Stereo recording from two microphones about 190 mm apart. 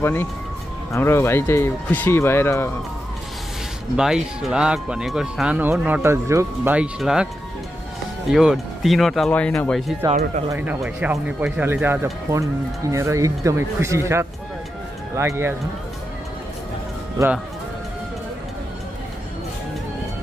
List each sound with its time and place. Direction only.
0.0 s speech: 10° left (ahead or behind)
3.9 s speech: 5° right (ahead or behind)
8.3 s speech: centre (ahead or behind)
10.5 s speech: 10° right (ahead or behind)